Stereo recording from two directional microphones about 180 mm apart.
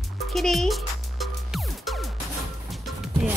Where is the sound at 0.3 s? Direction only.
Centre (ahead or behind).